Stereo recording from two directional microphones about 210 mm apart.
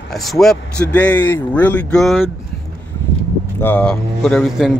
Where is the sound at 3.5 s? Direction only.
10° left (ahead or behind).